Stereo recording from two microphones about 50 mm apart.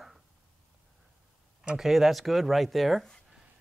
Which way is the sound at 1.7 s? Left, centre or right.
Centre.